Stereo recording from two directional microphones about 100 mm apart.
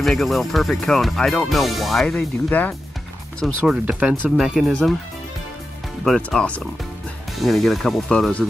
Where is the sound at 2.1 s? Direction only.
15° left (ahead or behind).